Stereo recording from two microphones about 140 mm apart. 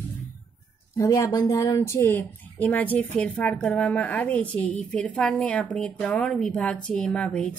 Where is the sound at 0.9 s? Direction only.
20° left (ahead or behind).